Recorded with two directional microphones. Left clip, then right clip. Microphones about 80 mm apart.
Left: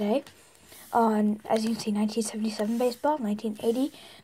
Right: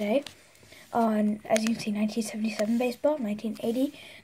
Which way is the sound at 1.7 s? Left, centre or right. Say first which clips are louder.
Left 2 dB; left.